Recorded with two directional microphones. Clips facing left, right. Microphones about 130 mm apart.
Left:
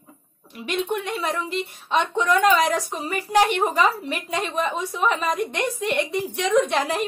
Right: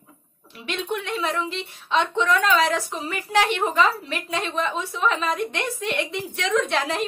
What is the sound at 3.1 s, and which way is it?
Speech, 35° left (ahead or behind).